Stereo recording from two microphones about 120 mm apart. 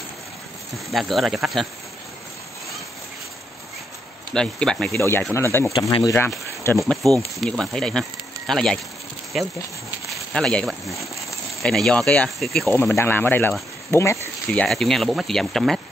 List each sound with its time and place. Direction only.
0.8 s speech: centre (ahead or behind)
4.3 s speech: 5° left (ahead or behind)
4.9 s speech: 20° left (ahead or behind)
5.8 s speech: 35° left (ahead or behind)
6.1 s speech: 20° left (ahead or behind)
6.8 s speech: centre (ahead or behind)
10.0 s a sound: centre (ahead or behind)
10.7 s speech: centre (ahead or behind)
12.6 s speech: 15° left (ahead or behind)
14.7 s speech: centre (ahead or behind)